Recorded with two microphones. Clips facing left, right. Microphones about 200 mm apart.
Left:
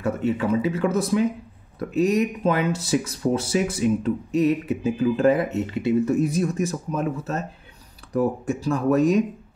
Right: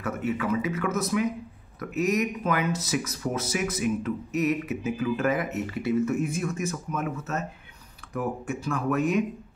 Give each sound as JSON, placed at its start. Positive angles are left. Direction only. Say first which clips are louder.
{"t": 0.0, "sound": "speech", "louder": "left 5 dB", "side_deg": 30}